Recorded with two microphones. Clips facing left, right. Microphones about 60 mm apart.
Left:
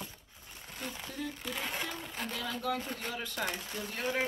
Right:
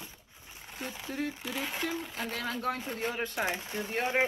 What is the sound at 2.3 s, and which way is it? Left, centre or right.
Speech, right.